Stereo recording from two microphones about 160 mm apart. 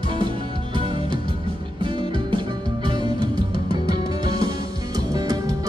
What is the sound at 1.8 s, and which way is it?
Music, 30° right (ahead or behind).